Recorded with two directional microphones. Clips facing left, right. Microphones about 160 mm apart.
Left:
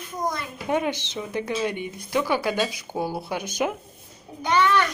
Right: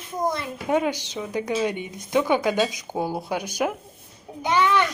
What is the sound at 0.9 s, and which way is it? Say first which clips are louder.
Speech: right 1 dB; 10° right (ahead or behind).